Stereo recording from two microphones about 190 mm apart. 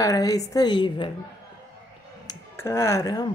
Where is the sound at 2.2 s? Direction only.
15° left (ahead or behind).